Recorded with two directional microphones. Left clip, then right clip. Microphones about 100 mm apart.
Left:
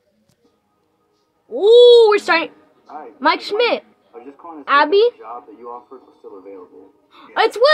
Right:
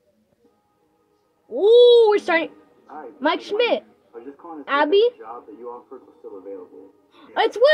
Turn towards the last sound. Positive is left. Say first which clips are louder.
# left 3 dB
turn(degrees=15)  # may be behind; listen again after turning